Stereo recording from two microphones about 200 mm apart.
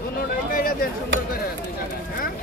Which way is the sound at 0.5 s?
45° left (ahead or behind).